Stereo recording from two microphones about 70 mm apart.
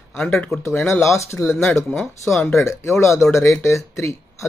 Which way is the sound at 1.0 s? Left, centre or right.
Left.